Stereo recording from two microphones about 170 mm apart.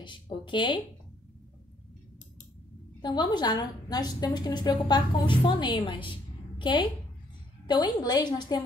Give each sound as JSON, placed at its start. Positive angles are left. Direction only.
{"t": 0.0, "sound": "a woman's voice", "side_deg": 30}
{"t": 3.0, "sound": "a woman's voice", "side_deg": 25}